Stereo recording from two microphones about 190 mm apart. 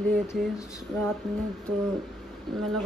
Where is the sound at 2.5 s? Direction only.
Centre (ahead or behind).